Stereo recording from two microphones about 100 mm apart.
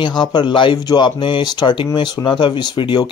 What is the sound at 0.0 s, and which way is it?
Speech, 50° left (ahead or behind).